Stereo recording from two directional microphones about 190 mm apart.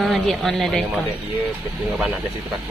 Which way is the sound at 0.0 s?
Centre (ahead or behind).